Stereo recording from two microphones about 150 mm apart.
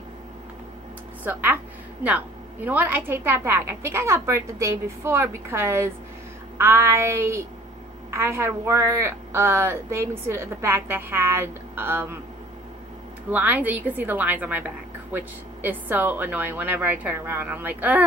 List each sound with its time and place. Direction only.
1.2 s a woman's voice: 10° right (ahead or behind)
13.3 s a woman's voice: 10° right (ahead or behind)